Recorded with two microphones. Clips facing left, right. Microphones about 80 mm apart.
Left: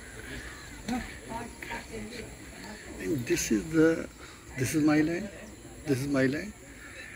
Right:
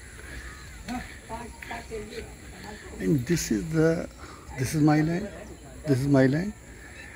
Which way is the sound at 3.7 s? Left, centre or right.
Centre.